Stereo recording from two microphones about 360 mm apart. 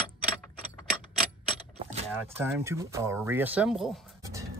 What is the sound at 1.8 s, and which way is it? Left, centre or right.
Vehicle, centre.